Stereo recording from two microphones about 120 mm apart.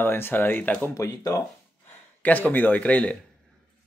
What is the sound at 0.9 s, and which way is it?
Speech, 30° left (ahead or behind).